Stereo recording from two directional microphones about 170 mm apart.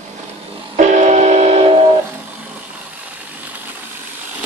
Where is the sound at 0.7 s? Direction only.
45° right (ahead or behind).